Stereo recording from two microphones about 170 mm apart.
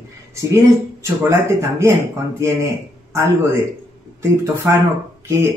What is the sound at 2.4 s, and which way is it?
Speech, 15° right (ahead or behind).